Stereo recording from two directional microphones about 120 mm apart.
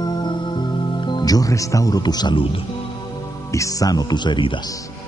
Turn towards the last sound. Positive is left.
turn(degrees=40)  # may be behind; listen again after turning